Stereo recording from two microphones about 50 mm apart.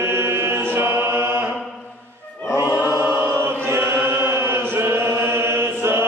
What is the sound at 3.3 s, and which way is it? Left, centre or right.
Chant, right.